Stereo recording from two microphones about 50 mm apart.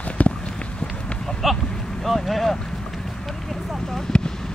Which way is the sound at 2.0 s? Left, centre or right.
Centre.